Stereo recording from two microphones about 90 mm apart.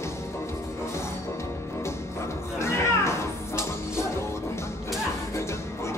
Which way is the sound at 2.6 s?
30° left (ahead or behind).